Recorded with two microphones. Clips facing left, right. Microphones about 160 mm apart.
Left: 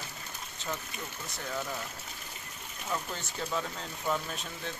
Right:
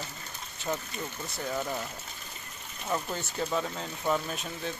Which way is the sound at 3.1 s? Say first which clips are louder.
Right 4 dB; 5° right (ahead or behind).